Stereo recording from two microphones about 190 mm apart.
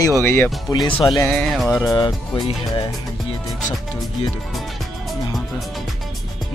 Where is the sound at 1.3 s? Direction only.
Centre (ahead or behind).